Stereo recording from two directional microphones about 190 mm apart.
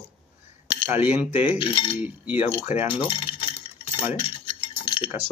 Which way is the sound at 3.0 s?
30° left (ahead or behind).